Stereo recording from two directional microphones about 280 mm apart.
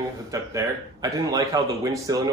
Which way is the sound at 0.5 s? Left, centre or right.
Centre.